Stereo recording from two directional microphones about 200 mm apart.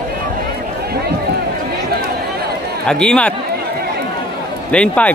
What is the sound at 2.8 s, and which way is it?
Speech, 5° left (ahead or behind).